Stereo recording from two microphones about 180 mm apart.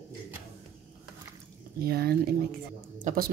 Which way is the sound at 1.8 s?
60° right (ahead or behind).